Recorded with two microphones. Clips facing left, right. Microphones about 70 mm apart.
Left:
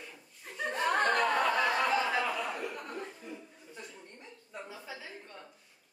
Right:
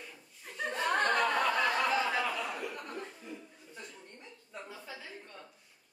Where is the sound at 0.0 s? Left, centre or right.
Centre.